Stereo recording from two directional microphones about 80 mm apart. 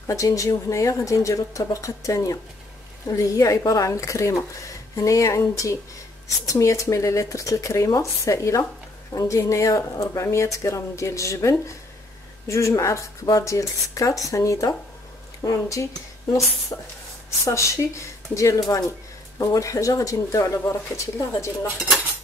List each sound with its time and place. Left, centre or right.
0.0 s speech: left